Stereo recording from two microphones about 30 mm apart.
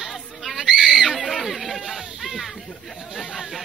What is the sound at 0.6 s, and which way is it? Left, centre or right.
Speech, centre.